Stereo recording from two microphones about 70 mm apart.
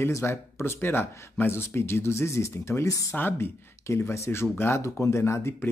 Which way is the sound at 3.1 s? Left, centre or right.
Left.